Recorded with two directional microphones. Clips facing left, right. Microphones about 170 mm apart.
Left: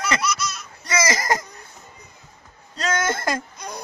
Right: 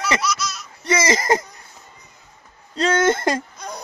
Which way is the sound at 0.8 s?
25° right (ahead or behind).